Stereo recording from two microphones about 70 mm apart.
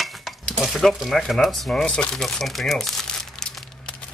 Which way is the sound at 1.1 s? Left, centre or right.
Centre.